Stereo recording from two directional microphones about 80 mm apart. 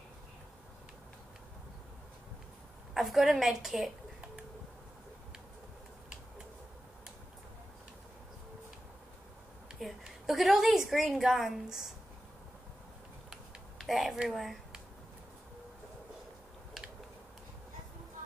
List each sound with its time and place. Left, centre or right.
2.9 s a woman's voice: centre
9.8 s a woman's voice: centre
13.3 s a sound: centre